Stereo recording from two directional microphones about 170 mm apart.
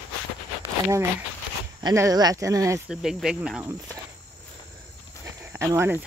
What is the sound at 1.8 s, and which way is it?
Speech, 20° right (ahead or behind).